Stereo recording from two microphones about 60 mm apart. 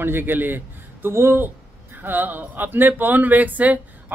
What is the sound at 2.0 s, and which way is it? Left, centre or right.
A man's voice, right.